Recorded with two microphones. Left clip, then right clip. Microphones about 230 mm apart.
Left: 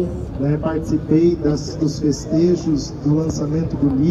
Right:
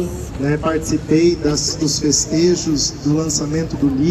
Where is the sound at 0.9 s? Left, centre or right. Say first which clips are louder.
Even; right.